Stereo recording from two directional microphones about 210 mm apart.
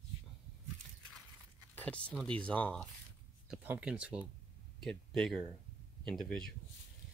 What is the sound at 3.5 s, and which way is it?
Speech, 5° right (ahead or behind).